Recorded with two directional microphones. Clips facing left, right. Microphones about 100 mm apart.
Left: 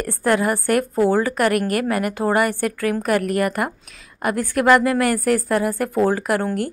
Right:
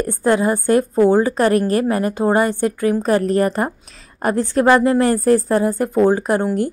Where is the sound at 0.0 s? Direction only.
20° right (ahead or behind).